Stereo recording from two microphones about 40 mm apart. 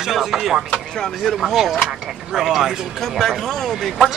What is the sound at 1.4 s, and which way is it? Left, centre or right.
Speech, centre.